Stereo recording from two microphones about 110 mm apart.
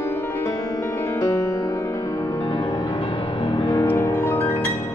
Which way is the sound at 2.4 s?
50° left (ahead or behind).